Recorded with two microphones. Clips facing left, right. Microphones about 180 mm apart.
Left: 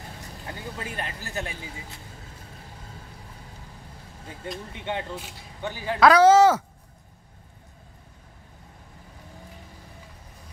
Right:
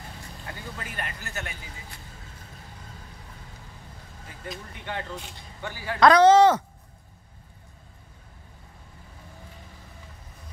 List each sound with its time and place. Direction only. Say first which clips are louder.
0.2 s speech: left 3 dB; 20° left (ahead or behind)
4.7 s a woman's voice: left 4 dB; 25° left (ahead or behind)
5.1 s speech: left 1 dB; 5° left (ahead or behind)
5.6 s a woman's voice: left 4 dB; 20° left (ahead or behind)
5.9 s speech: even; 5° left (ahead or behind)